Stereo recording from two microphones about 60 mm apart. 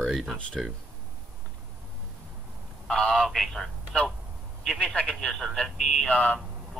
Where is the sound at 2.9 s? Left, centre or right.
Centre.